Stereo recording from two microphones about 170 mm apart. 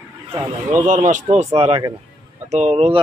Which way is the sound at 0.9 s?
45° right (ahead or behind).